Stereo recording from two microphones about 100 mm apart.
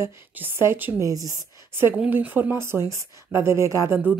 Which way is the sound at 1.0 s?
35° right (ahead or behind).